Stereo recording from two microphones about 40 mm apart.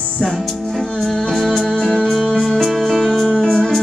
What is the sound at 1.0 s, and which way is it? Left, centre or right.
Music, centre.